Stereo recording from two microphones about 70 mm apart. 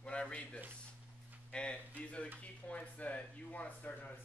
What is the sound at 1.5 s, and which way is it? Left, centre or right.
Speech, centre.